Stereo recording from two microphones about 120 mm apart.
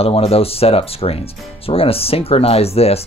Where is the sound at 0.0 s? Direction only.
55° left (ahead or behind).